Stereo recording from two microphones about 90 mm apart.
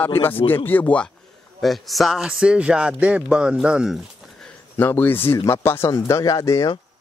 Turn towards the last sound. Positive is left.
turn(degrees=40)  # may be behind; listen again after turning